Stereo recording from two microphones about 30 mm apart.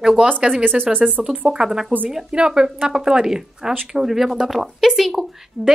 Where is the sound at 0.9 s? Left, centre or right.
Right.